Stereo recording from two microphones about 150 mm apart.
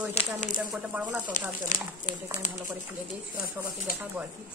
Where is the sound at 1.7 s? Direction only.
60° left (ahead or behind).